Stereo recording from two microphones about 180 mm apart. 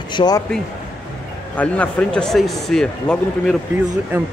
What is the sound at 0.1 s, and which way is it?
Speech, 25° left (ahead or behind).